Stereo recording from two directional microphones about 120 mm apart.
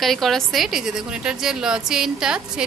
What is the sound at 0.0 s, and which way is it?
A woman's voice, centre (ahead or behind).